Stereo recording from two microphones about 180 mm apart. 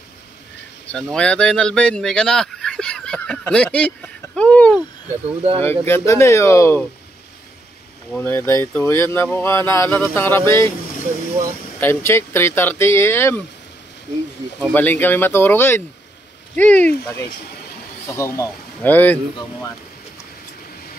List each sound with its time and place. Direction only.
0.8 s speech: 5° left (ahead or behind)
8.1 s speech: 10° left (ahead or behind)
11.8 s speech: 15° left (ahead or behind)
14.6 s speech: 10° left (ahead or behind)